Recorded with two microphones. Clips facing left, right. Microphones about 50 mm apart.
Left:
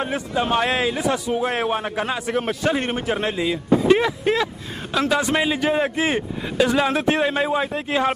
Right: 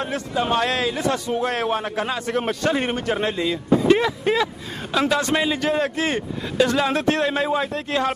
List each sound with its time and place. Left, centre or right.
0.3 s a man's voice: centre
0.7 s a man's voice: centre
0.9 s a man's voice: centre
5.2 s a man's voice: centre